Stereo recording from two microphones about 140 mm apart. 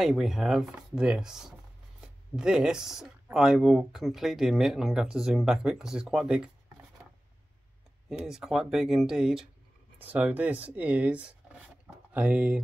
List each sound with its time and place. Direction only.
0.0 s speech: centre (ahead or behind)
8.3 s speech: 5° right (ahead or behind)